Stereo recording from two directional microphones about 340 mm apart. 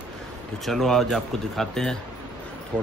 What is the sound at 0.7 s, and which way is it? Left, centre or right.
Speech, centre.